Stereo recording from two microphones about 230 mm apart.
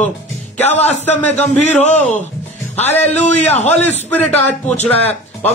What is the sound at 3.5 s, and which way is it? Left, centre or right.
Speech, left.